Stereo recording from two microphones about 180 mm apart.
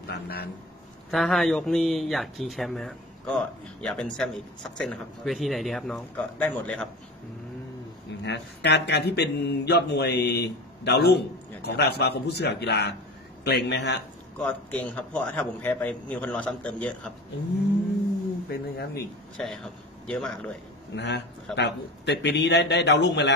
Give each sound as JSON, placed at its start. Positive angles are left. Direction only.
{"t": 1.1, "sound": "speech", "side_deg": 0}
{"t": 8.2, "sound": "speech", "side_deg": 70}
{"t": 14.4, "sound": "a man's voice", "side_deg": 5}
{"t": 18.5, "sound": "speech", "side_deg": 60}
{"t": 19.3, "sound": "speech", "side_deg": 0}
{"t": 20.9, "sound": "speech", "side_deg": 75}